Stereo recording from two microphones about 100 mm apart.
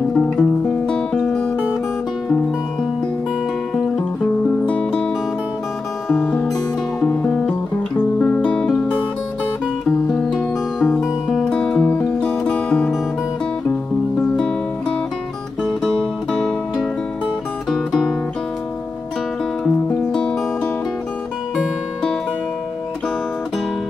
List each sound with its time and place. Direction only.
0.1 s music: 10° left (ahead or behind)
3.7 s music: 5° left (ahead or behind)
6.1 s music: 20° left (ahead or behind)
7.2 s music: 5° left (ahead or behind)
9.8 s music: centre (ahead or behind)
19.6 s music: 5° left (ahead or behind)